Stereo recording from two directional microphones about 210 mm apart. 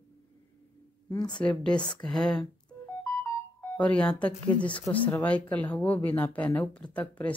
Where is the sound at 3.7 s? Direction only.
5° left (ahead or behind).